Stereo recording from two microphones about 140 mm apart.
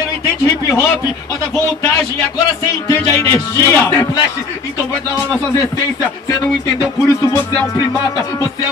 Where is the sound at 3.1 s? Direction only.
20° left (ahead or behind).